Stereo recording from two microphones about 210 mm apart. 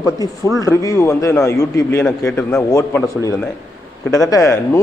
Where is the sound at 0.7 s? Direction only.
10° left (ahead or behind).